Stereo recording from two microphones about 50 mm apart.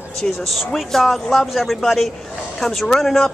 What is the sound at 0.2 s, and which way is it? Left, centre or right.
Speech, centre.